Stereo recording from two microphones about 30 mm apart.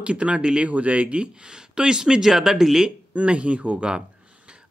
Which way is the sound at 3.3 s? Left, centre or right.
Right.